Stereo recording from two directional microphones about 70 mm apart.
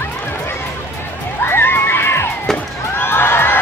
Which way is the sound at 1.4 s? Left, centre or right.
Left.